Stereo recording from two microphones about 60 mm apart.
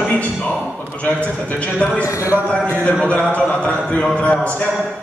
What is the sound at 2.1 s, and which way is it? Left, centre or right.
Speech, left.